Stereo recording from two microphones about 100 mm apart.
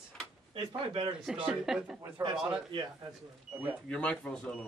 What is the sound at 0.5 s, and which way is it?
Speech, 55° right (ahead or behind).